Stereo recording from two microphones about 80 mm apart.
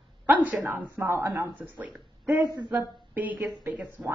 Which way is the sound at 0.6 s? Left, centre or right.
Right.